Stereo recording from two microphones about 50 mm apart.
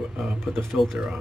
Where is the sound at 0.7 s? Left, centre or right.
Centre.